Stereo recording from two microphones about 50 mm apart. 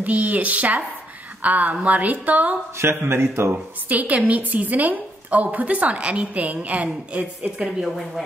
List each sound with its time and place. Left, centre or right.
0.0 s a woman's voice: right
3.0 s speech: right
3.5 s a woman's voice: right
7.6 s a woman's voice: centre